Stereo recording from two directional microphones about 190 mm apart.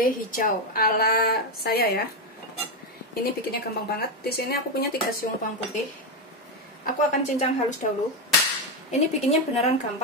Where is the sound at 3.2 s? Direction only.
55° left (ahead or behind).